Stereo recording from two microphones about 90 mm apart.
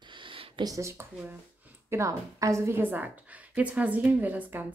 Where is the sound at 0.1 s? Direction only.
70° right (ahead or behind).